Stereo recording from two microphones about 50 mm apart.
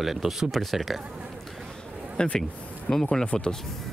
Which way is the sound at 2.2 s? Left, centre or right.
Centre.